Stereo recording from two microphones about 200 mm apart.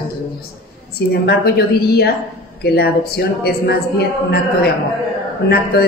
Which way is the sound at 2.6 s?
50° left (ahead or behind).